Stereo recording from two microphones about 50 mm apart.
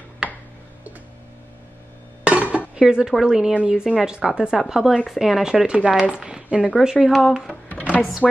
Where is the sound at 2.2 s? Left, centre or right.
Right.